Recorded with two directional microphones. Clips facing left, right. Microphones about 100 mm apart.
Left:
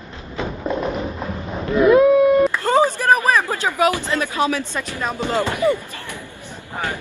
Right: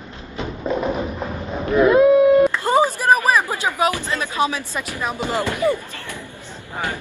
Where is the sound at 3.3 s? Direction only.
15° right (ahead or behind).